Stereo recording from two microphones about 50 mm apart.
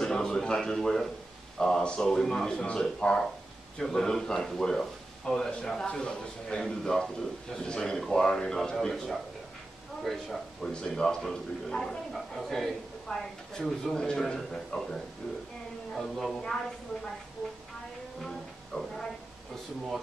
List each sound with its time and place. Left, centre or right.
0.0 s a man's voice: centre
10.7 s a man's voice: centre
18.7 s a woman's voice: centre